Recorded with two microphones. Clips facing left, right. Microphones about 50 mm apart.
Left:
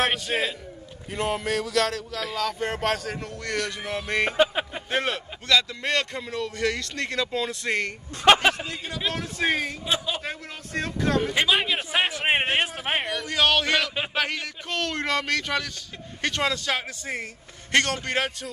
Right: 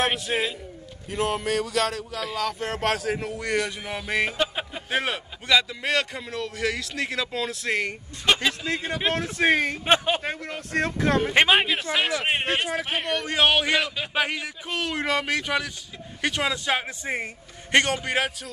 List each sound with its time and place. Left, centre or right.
0.0 s speech: centre
4.4 s a sound: centre
4.8 s speech: centre
8.3 s a man's voice: left
8.8 s speech: right
11.9 s a man's voice: left
13.2 s a man's voice: right; by 18.5 s centre